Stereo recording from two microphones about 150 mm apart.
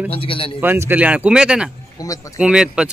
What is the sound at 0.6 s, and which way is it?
Speech, 15° right (ahead or behind).